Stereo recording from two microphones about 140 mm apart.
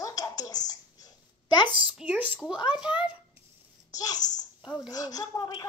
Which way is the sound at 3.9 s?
25° left (ahead or behind).